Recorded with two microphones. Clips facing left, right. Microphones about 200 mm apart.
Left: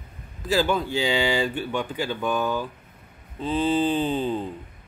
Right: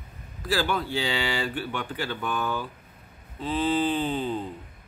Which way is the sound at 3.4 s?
20° left (ahead or behind).